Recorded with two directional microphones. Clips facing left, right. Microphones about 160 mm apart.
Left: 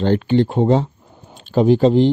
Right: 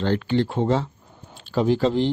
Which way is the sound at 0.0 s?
20° left (ahead or behind).